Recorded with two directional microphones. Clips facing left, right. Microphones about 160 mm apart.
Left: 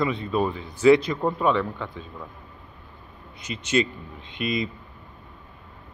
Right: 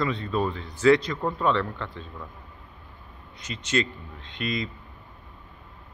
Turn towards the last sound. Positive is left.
turn(degrees=10)  # may be behind; listen again after turning